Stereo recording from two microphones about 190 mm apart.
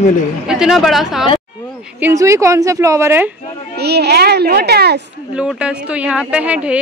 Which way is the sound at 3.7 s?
60° right (ahead or behind).